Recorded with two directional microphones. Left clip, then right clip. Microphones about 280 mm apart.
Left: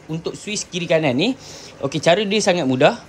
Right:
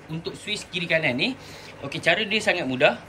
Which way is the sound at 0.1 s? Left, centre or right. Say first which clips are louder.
Left 4 dB; centre.